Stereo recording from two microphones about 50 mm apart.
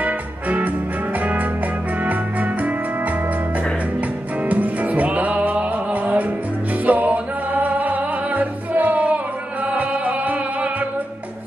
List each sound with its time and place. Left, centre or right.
0.0 s music: right
4.5 s music: right